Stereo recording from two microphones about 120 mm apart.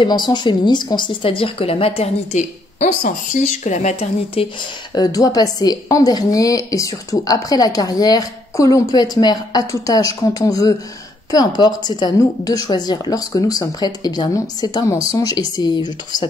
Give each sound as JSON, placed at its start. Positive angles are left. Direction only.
{"t": 0.0, "sound": "speech", "side_deg": 40}
{"t": 4.9, "sound": "a woman's voice", "side_deg": 35}